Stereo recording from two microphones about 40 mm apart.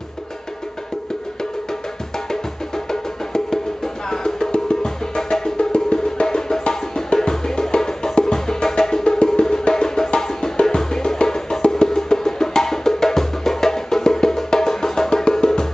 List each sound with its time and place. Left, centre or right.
2.7 s music: centre
6.2 s music: centre